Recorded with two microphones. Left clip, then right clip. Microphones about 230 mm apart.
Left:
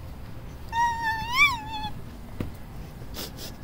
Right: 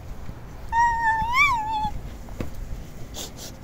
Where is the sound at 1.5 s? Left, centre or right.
Centre.